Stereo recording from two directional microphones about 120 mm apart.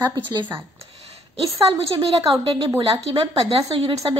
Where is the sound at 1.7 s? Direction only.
40° right (ahead or behind).